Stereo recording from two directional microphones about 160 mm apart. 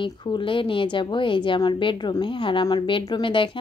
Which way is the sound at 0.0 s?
30° left (ahead or behind).